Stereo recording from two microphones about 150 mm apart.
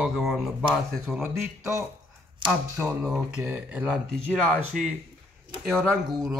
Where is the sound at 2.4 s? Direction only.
20° right (ahead or behind).